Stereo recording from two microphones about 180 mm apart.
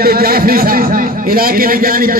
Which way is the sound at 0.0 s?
55° right (ahead or behind).